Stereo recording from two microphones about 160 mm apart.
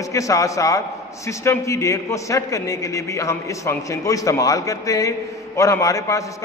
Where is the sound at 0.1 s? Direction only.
20° left (ahead or behind).